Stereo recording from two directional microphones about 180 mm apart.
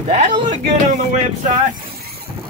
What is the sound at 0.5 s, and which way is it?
Music, 45° right (ahead or behind).